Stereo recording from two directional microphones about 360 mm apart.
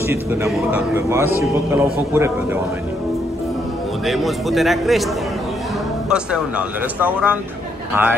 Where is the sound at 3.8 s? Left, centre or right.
Centre.